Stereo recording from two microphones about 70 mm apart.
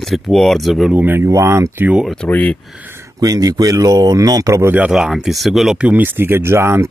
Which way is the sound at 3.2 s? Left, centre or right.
Right.